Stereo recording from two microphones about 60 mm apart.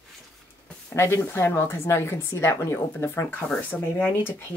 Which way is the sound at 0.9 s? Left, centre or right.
Left.